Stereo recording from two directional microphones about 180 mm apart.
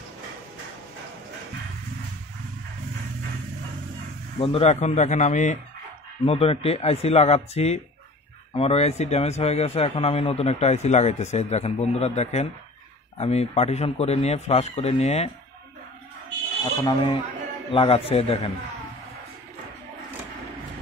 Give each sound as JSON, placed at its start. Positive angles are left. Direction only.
{"t": 4.4, "sound": "a man's voice", "side_deg": 30}
{"t": 16.8, "sound": "a man's voice", "side_deg": 30}